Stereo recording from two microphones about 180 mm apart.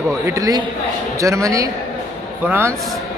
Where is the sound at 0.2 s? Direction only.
15° right (ahead or behind).